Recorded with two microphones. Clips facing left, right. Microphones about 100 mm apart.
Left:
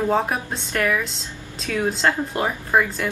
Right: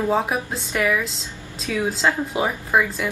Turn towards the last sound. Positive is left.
turn(degrees=0)  # may be behind; listen again after turning